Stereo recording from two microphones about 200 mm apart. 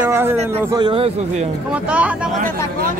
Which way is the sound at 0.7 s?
25° right (ahead or behind).